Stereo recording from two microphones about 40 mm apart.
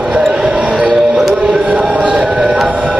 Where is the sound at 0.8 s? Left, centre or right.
Centre.